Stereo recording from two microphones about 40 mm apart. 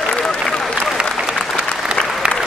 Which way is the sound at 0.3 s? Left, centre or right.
Centre.